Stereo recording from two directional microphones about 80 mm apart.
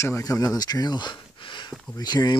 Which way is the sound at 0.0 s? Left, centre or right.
Left.